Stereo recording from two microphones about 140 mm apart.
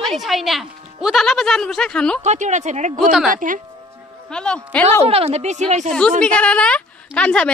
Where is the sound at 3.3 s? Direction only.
70° right (ahead or behind).